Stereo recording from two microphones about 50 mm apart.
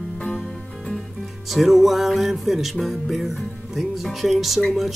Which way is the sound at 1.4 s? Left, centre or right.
Centre.